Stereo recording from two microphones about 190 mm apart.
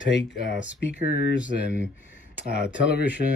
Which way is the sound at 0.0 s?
75° left (ahead or behind).